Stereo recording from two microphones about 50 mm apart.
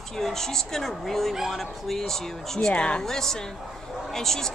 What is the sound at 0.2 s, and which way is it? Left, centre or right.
Speech, centre.